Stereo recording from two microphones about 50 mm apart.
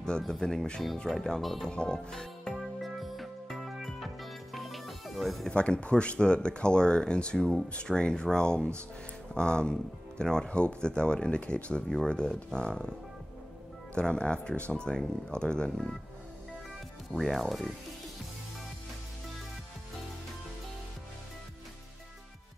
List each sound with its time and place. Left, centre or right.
0.2 s speech: centre
2.5 s music: centre
5.5 s speech: left
13.9 s speech: centre
17.1 s speech: centre